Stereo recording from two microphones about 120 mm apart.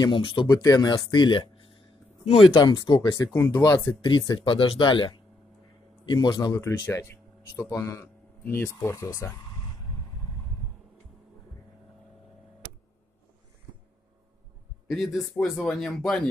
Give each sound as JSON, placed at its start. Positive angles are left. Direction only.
{"t": 0.0, "sound": "speech", "side_deg": 45}
{"t": 0.5, "sound": "speech", "side_deg": 30}
{"t": 0.9, "sound": "speech", "side_deg": 40}
{"t": 2.2, "sound": "speech", "side_deg": 50}
{"t": 2.5, "sound": "speech", "side_deg": 35}
{"t": 3.9, "sound": "speech", "side_deg": 40}
{"t": 6.9, "sound": "speech", "side_deg": 20}
{"t": 14.9, "sound": "speech", "side_deg": 0}